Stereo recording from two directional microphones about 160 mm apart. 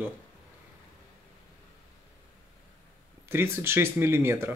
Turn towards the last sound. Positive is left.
turn(degrees=-15)  # may be behind; listen again after turning